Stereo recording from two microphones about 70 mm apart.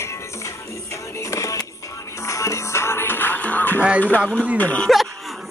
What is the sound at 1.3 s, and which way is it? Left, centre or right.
Music, left.